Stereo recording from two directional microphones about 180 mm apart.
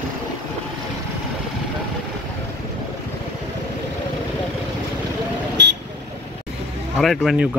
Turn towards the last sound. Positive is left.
turn(degrees=0)  # may be behind; listen again after turning